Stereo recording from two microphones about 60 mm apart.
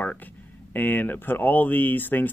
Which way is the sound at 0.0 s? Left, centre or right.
Left.